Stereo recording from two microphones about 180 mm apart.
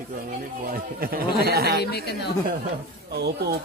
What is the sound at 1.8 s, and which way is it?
Speech, 65° left (ahead or behind).